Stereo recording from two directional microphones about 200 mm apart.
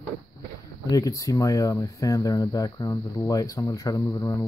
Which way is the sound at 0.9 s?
15° left (ahead or behind).